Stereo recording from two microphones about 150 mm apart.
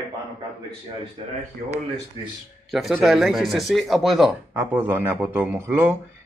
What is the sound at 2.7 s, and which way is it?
Speech, centre (ahead or behind).